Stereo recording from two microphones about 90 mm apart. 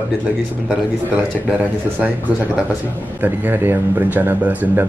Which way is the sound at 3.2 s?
20° right (ahead or behind).